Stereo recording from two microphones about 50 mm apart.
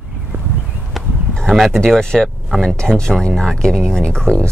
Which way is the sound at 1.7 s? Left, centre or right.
Centre.